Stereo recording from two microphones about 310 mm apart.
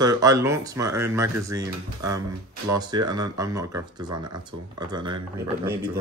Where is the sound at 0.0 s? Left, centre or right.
Centre.